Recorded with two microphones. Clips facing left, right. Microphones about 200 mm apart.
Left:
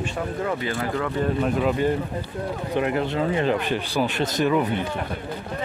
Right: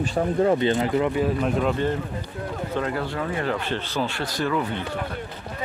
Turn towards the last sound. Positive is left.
turn(degrees=15)  # may be behind; listen again after turning